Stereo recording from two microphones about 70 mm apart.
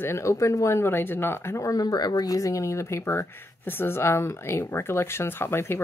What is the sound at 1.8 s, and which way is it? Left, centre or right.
Speech, left.